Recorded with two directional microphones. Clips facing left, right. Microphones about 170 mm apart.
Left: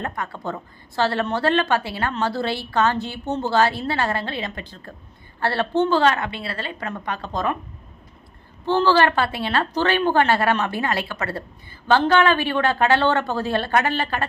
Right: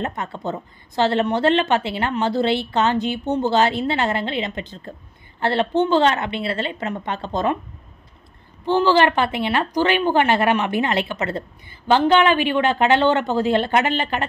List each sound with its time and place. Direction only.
0.0 s a woman's voice: 20° right (ahead or behind)
8.6 s a woman's voice: 15° right (ahead or behind)